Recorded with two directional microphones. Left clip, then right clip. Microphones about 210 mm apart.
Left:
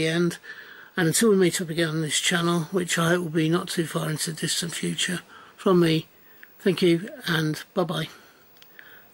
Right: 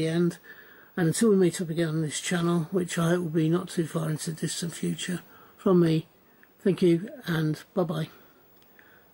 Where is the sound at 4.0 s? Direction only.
10° right (ahead or behind).